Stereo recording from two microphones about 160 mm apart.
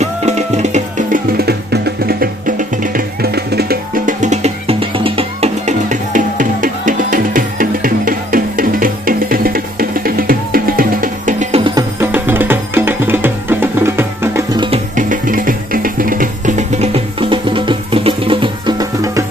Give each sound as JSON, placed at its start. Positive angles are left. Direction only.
{"t": 0.0, "sound": "music", "side_deg": -45}
{"t": 12.0, "sound": "music", "side_deg": -10}
{"t": 15.0, "sound": "music", "side_deg": -55}